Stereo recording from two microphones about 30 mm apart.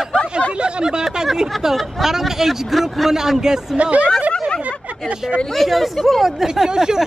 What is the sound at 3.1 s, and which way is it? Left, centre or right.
Speech, centre.